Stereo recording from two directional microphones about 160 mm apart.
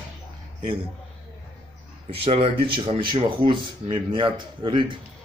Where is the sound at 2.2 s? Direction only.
35° right (ahead or behind).